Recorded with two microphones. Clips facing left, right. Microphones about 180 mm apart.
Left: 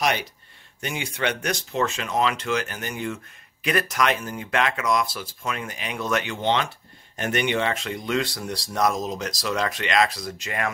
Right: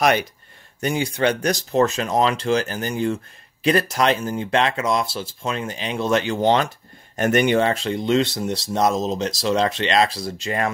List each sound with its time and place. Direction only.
0.7 s speech: 40° right (ahead or behind)